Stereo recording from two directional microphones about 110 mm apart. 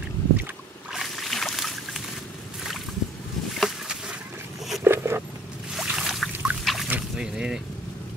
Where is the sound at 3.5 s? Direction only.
5° right (ahead or behind).